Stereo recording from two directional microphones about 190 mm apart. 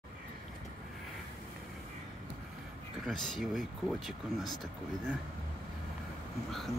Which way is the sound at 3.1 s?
Centre (ahead or behind).